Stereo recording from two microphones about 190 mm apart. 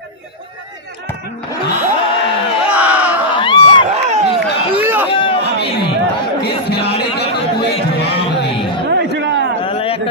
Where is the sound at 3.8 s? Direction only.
35° right (ahead or behind).